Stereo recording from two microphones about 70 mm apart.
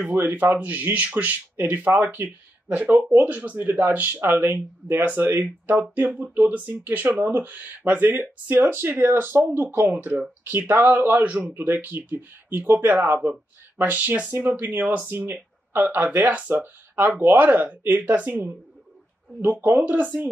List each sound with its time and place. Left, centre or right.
0.0 s speech: right
19.6 s speech: right